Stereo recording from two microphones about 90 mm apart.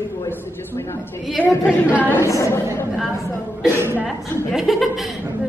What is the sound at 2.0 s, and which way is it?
Speech, 25° left (ahead or behind).